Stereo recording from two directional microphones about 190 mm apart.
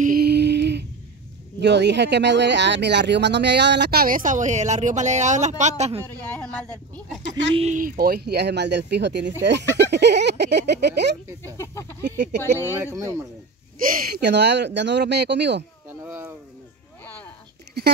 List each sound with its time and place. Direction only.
0.0 s a sound: 50° right (ahead or behind)
1.6 s speech: 65° right (ahead or behind); by 5.9 s 35° right (ahead or behind)
6.2 s speech: 5° left (ahead or behind)
7.5 s speech: 40° right (ahead or behind); by 11.1 s 65° right (ahead or behind)
11.5 s speech: 15° left (ahead or behind)
12.0 s speech: 60° right (ahead or behind)
12.5 s speech: 15° right (ahead or behind)
13.8 s speech: 50° right (ahead or behind)
17.0 s a sound: 10° left (ahead or behind)
17.8 s a sound: 60° right (ahead or behind)